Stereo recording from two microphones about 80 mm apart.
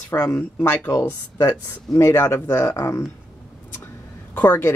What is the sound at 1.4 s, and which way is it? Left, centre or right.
Speech, left.